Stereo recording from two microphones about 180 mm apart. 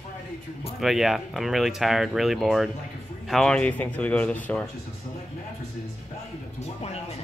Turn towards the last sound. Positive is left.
turn(degrees=35)  # may be behind; listen again after turning